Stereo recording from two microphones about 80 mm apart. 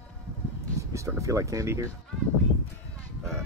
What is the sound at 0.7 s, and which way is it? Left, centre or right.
Speech, right.